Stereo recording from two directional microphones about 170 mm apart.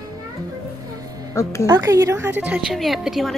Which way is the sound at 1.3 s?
15° left (ahead or behind).